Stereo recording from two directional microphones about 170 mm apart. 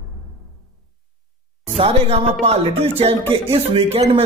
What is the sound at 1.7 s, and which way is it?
A man's voice, 35° right (ahead or behind).